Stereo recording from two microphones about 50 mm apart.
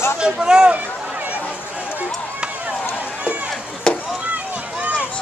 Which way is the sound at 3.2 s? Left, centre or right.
Right.